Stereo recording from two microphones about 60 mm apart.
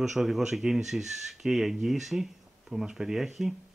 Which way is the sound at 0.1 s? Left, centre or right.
Centre.